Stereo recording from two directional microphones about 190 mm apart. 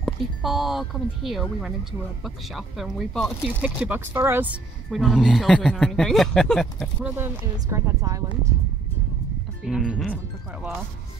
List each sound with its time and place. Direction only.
0.0 s speech: centre (ahead or behind)
3.8 s a woman's voice: 10° right (ahead or behind)
4.9 s speech: centre (ahead or behind)
7.5 s a woman's voice: 15° right (ahead or behind)
9.7 s speech: 5° right (ahead or behind)